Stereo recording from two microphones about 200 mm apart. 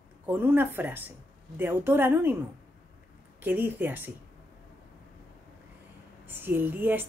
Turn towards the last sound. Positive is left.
turn(degrees=-10)  # may be behind; listen again after turning